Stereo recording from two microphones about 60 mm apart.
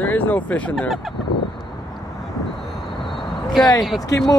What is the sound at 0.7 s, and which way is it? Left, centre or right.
Speech, centre.